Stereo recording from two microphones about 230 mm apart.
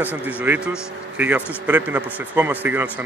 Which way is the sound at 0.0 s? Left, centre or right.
Centre.